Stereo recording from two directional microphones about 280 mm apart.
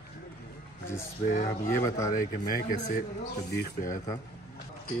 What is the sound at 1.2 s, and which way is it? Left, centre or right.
Speech, left.